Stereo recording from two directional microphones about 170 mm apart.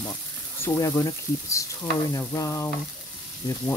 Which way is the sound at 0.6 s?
15° left (ahead or behind).